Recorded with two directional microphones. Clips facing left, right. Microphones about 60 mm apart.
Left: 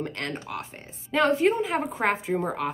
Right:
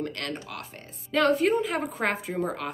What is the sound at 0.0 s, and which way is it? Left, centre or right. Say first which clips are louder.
Speech: left 1 dB; centre.